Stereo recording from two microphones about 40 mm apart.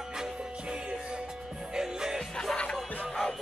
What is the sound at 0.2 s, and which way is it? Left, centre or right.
Music, right.